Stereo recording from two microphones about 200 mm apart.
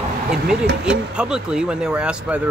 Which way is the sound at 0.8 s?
5° right (ahead or behind).